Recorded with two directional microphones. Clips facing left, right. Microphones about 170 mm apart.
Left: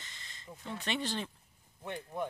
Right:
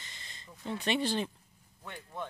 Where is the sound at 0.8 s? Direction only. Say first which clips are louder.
Right 5 dB; 10° right (ahead or behind).